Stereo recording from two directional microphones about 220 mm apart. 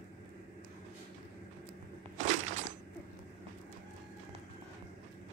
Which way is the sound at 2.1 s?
35° right (ahead or behind).